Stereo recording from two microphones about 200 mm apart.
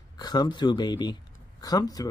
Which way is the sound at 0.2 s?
20° left (ahead or behind).